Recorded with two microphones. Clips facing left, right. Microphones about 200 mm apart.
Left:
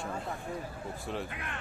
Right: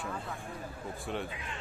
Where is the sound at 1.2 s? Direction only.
60° left (ahead or behind).